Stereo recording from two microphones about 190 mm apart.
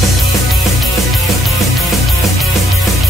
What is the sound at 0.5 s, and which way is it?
Music, centre (ahead or behind).